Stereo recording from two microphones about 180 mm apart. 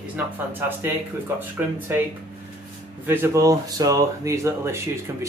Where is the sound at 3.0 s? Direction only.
10° right (ahead or behind).